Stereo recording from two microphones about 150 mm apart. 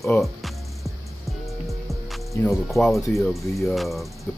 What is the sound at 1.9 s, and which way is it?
Music, centre (ahead or behind).